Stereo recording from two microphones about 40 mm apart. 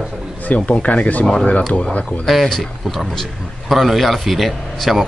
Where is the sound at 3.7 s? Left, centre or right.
Centre.